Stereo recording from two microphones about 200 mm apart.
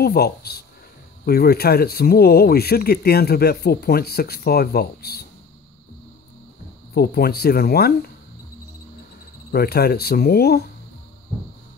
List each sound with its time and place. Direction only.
0.0 s speech: 50° left (ahead or behind)
6.9 s speech: 50° left (ahead or behind)
9.5 s speech: 50° left (ahead or behind)